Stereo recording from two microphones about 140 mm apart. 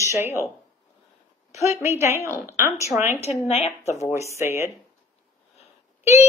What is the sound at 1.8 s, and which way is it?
Speech, 20° right (ahead or behind).